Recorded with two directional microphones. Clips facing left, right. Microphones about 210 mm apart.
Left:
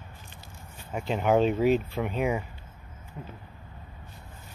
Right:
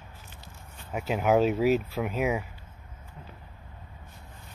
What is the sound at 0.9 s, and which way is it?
Speech, 5° right (ahead or behind).